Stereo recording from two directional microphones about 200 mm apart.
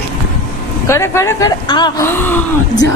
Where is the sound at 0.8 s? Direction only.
15° left (ahead or behind).